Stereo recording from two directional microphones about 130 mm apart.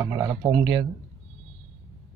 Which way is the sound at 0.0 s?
30° right (ahead or behind).